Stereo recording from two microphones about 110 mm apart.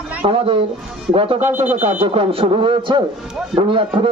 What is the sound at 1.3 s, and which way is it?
A man's voice, 90° right.